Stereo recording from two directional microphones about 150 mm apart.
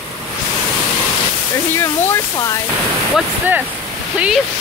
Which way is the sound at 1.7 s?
15° left (ahead or behind).